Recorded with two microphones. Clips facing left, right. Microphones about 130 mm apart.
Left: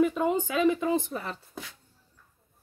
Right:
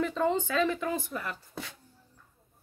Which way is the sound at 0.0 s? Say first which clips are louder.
Left 3 dB; 10° left (ahead or behind).